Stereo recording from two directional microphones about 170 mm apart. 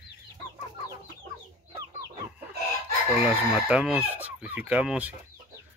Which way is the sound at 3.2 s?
10° right (ahead or behind).